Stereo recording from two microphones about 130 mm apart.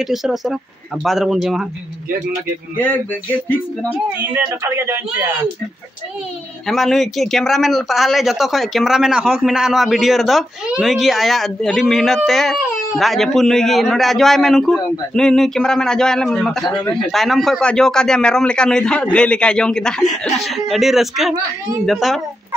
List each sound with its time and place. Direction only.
0.0 s speech: centre (ahead or behind)
2.8 s speech: 15° left (ahead or behind)
4.2 s speech: 20° right (ahead or behind)
6.7 s speech: centre (ahead or behind)